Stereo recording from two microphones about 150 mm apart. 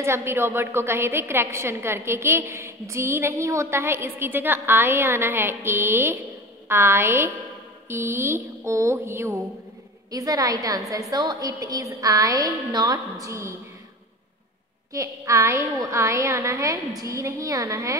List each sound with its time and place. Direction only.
0.0 s a woman's voice: 15° right (ahead or behind)
14.9 s a woman's voice: 20° right (ahead or behind)